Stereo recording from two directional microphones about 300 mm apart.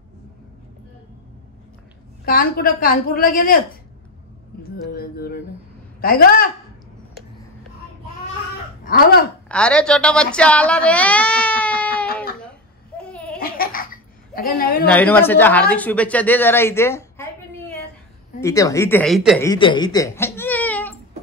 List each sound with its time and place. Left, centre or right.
2.2 s a woman's voice: left
4.6 s a sound: left
5.9 s a woman's voice: left
8.8 s a sound: left
9.5 s a woman's voice: centre
13.4 s laughter: left
14.3 s a woman's voice: left
14.9 s speech: centre
19.5 s speech: centre